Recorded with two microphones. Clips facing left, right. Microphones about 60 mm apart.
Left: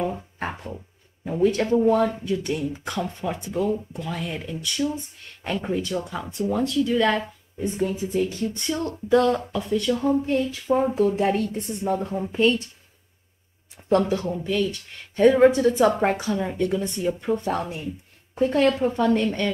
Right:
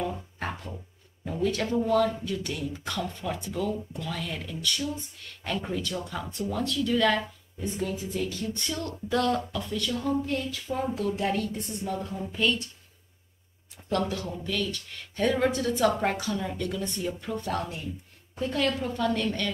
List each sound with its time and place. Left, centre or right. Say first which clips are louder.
0.0 s music: left 4 dB; left
1.2 s speech: left 7 dB; left
6.6 s speech: left 3 dB; centre
7.2 s a woman's voice: left 5 dB; left
13.8 s speech: left 8 dB; left